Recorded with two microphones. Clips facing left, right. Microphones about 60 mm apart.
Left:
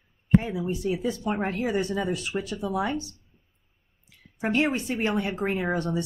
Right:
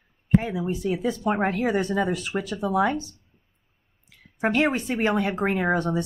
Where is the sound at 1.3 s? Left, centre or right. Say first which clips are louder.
Right 4 dB; right.